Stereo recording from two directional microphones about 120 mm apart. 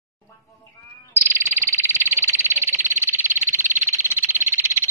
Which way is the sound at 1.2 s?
20° right (ahead or behind).